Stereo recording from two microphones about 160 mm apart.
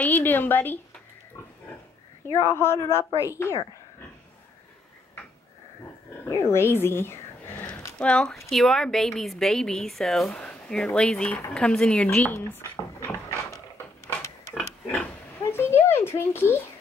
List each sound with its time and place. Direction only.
0.0 s a woman's voice: 10° left (ahead or behind)
2.3 s speech: 15° left (ahead or behind)
6.2 s speech: 15° left (ahead or behind)
7.6 s a sound: 10° left (ahead or behind)
8.5 s a woman's voice: centre (ahead or behind); by 13.6 s 15° left (ahead or behind)
14.6 s pig: 15° left (ahead or behind)
15.9 s a child's voice: 15° left (ahead or behind)